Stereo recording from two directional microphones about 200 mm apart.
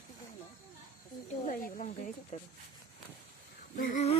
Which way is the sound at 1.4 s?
40° left (ahead or behind).